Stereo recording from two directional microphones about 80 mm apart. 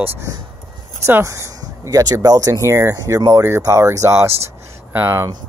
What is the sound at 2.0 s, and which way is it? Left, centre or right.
Speech, right.